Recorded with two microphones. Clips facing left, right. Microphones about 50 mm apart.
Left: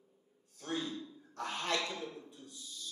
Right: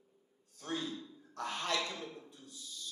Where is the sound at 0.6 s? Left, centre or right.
Centre.